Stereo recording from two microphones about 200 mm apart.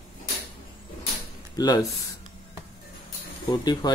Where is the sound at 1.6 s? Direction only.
20° left (ahead or behind).